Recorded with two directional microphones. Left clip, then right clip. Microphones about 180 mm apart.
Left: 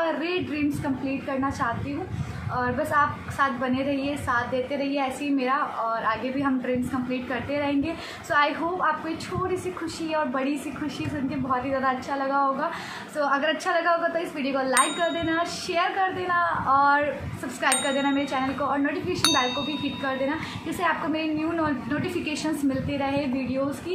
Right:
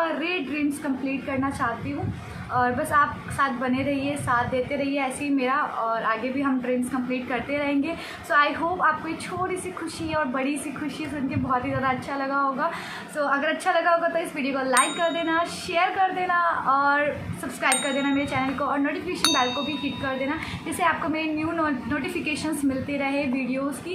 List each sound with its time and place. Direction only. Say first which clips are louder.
0.0 s a woman's voice: even; 5° right (ahead or behind)
0.8 s ding: even; 5° right (ahead or behind)
2.5 s a woman's voice: right 2 dB; 10° right (ahead or behind)
10.1 s a woman's voice: even; 10° right (ahead or behind)
17.6 s ding: even; centre (ahead or behind)
20.8 s a woman's voice: right 2 dB; 10° right (ahead or behind)